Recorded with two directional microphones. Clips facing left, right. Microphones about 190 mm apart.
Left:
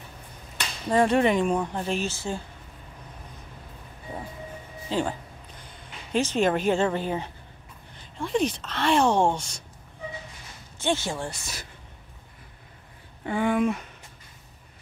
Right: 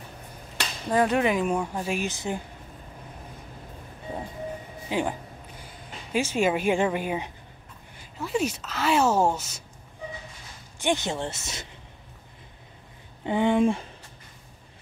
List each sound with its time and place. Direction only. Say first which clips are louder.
0.9 s speech: left 2 dB; centre (ahead or behind); by 2.4 s 20° right (ahead or behind)
4.8 s speech: even; 15° right (ahead or behind)
6.1 s speech: left 1 dB; 10° right (ahead or behind)
10.8 s speech: right 1 dB; 15° right (ahead or behind)
13.2 s speech: right 2 dB; 20° right (ahead or behind)